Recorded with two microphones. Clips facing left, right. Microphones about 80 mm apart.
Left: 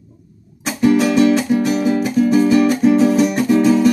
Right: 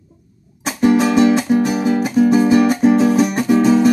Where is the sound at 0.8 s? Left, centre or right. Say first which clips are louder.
Even; right.